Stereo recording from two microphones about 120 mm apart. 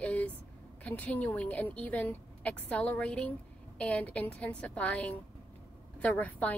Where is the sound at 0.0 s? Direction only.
10° left (ahead or behind).